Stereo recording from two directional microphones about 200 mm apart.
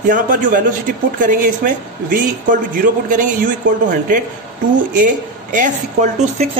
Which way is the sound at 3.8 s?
40° right (ahead or behind).